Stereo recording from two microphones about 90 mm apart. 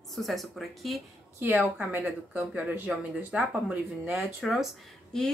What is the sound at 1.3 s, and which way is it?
A woman's voice, 20° right (ahead or behind).